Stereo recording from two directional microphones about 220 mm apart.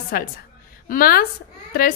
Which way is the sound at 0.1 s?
40° left (ahead or behind).